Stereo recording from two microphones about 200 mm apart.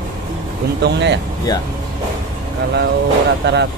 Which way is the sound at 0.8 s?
60° right (ahead or behind).